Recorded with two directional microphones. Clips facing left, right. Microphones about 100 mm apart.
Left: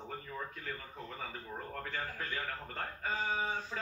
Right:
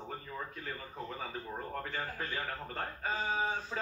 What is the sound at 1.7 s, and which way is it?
A man's voice, 20° right (ahead or behind).